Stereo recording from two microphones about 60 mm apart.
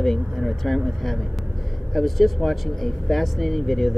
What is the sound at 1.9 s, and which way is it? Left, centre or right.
Speech, centre.